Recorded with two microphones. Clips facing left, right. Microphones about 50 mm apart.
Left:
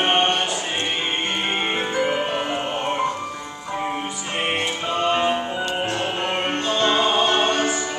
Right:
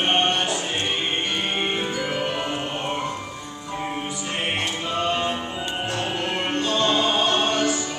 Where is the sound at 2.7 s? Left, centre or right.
Centre.